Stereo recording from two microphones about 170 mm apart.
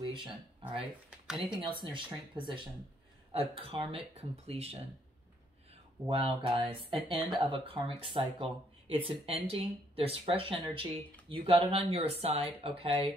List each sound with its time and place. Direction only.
0.0 s a sound: 30° right (ahead or behind)
1.2 s speech: 5° right (ahead or behind)
1.8 s speech: 30° right (ahead or behind)
6.0 s speech: 30° right (ahead or behind)